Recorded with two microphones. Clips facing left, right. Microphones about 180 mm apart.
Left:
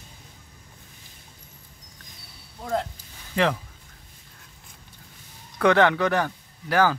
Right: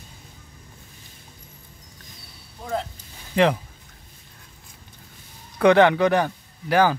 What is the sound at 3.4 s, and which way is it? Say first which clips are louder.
Speech: right 4 dB; 20° right (ahead or behind).